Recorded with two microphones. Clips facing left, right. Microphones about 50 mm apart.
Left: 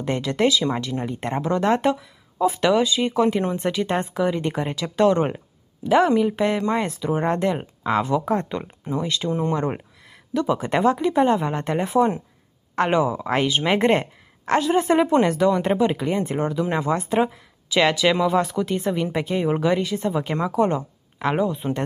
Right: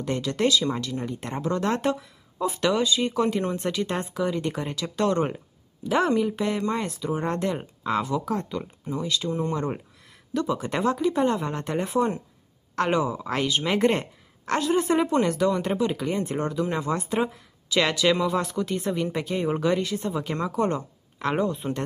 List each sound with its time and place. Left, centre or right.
0.0 s speech: left
21.4 s speech: centre